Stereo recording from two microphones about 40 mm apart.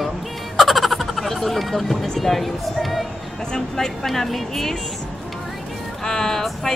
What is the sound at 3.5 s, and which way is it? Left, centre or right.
Speech, centre.